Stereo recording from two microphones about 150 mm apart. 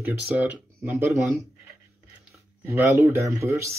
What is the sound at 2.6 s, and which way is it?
Speech, 20° right (ahead or behind).